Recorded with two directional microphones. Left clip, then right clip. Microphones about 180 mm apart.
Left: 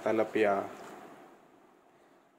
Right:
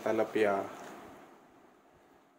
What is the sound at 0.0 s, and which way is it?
Speech, 10° left (ahead or behind).